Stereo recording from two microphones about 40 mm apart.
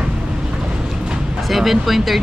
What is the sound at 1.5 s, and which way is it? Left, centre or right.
Speech, centre.